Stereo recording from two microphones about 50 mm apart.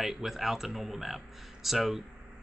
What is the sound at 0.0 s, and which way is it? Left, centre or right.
Speech, centre.